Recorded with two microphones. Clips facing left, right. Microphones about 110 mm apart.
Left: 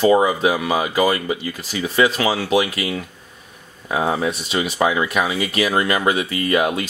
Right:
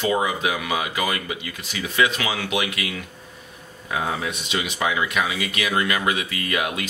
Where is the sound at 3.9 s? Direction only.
35° left (ahead or behind).